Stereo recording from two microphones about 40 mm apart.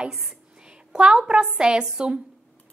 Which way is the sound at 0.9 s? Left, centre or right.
Right.